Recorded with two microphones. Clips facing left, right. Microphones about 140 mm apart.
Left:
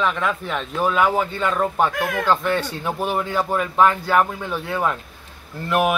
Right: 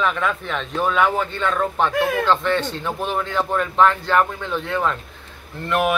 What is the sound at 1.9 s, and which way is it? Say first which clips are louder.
Speech: right 4 dB; 30° right (ahead or behind).